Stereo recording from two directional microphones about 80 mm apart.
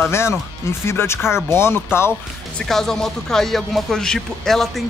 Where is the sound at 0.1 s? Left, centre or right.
Left.